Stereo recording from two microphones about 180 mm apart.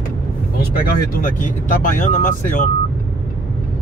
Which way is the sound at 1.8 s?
45° left (ahead or behind).